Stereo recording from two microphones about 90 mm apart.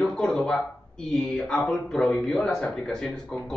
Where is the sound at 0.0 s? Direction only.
5° left (ahead or behind).